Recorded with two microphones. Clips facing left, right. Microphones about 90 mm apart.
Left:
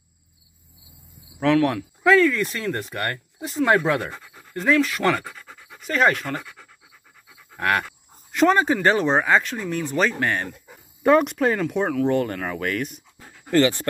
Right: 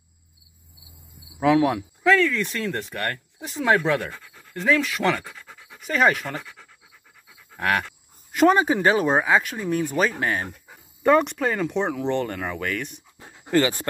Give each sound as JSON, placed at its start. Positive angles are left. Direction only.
{"t": 1.4, "sound": "speech", "side_deg": -10}
{"t": 2.0, "sound": "speech", "side_deg": 5}
{"t": 7.3, "sound": "pant", "side_deg": 0}
{"t": 8.3, "sound": "speech", "side_deg": -10}
{"t": 11.0, "sound": "speech", "side_deg": 5}
{"t": 13.2, "sound": "dog", "side_deg": -20}